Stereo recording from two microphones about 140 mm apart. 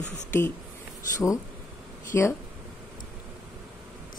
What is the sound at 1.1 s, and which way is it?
Speech, 25° left (ahead or behind).